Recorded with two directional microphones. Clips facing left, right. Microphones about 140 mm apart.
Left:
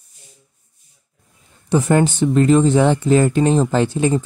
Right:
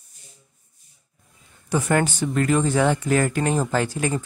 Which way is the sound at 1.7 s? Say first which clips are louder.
Left 6 dB; 25° left (ahead or behind).